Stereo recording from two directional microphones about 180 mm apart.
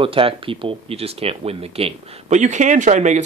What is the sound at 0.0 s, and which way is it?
Speech, 30° right (ahead or behind).